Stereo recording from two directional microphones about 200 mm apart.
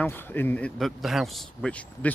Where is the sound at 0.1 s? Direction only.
10° left (ahead or behind).